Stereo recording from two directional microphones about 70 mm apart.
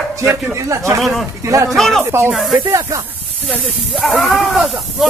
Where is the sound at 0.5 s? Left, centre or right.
Right.